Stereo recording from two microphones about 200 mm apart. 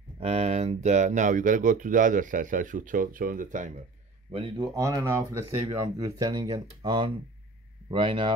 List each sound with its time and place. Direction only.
0.2 s speech: 30° right (ahead or behind)
4.3 s speech: 25° right (ahead or behind)